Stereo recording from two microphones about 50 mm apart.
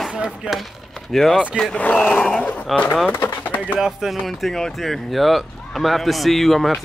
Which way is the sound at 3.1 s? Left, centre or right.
Left.